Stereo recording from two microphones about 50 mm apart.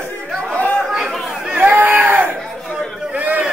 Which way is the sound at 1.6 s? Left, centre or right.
Right.